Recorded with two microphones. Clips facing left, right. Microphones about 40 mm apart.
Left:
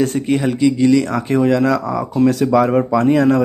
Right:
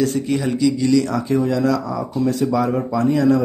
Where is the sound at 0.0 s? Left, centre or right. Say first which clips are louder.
Left 3 dB; left.